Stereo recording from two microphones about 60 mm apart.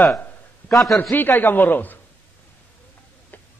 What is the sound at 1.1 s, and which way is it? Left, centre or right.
Speech, left.